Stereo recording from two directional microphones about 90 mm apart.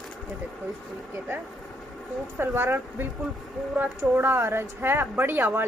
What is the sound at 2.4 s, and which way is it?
Speech, 25° right (ahead or behind).